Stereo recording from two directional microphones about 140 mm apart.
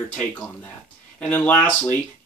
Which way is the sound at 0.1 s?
10° left (ahead or behind).